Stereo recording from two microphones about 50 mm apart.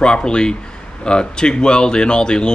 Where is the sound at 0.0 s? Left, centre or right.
Centre.